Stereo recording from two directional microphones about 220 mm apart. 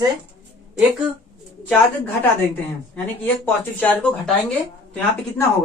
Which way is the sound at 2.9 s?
5° left (ahead or behind).